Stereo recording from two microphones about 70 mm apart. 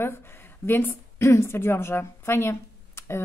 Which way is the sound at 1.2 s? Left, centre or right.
Left.